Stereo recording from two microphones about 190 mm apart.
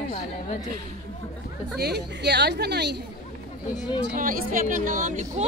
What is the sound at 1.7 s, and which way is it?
Speech, 60° right (ahead or behind).